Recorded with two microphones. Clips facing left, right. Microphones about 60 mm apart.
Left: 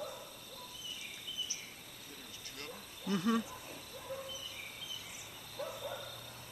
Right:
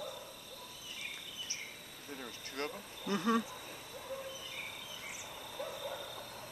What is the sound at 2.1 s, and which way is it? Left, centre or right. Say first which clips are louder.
Cricket: right 9 dB; right.